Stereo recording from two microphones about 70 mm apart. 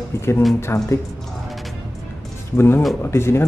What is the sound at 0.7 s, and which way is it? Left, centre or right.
Speech, left.